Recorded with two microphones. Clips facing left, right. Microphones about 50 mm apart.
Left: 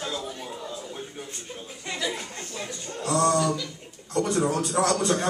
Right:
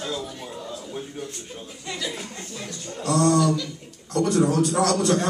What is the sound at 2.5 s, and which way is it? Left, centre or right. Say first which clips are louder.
A man's voice: left 1 dB; centre.